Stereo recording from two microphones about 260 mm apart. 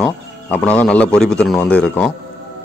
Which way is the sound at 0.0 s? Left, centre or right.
Centre.